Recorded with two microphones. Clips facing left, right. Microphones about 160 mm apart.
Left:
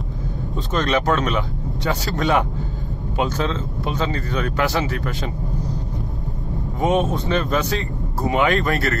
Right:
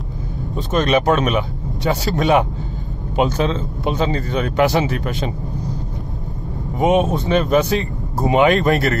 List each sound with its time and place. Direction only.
0.7 s speech: 15° right (ahead or behind)
6.8 s speech: 15° right (ahead or behind)